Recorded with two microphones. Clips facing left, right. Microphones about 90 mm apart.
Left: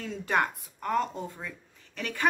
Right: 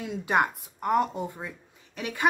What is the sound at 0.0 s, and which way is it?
Speech, 15° right (ahead or behind).